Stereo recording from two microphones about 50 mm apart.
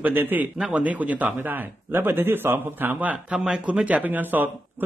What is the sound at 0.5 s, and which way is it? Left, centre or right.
Speech, right.